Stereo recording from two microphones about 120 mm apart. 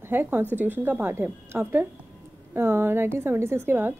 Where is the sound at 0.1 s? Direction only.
15° right (ahead or behind).